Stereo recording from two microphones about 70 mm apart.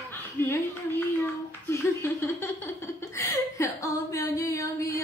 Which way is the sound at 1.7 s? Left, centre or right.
Left.